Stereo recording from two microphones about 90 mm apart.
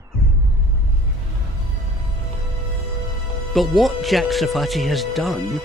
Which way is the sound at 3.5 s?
Centre (ahead or behind).